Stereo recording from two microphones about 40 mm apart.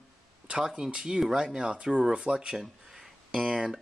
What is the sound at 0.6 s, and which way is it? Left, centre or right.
Speech, centre.